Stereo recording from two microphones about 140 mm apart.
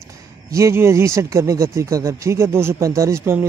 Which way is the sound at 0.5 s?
20° right (ahead or behind).